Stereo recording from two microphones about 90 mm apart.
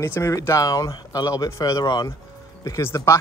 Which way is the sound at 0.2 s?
35° left (ahead or behind).